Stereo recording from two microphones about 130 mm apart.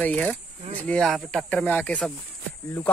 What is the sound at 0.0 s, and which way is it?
Speech, 10° left (ahead or behind).